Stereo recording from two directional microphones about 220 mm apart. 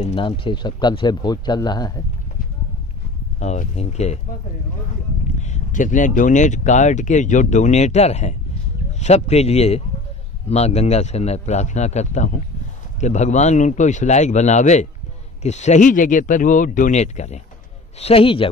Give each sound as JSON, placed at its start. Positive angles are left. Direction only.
{"t": 0.0, "sound": "speech", "side_deg": 25}
{"t": 3.3, "sound": "speech", "side_deg": 30}
{"t": 5.4, "sound": "speech", "side_deg": 35}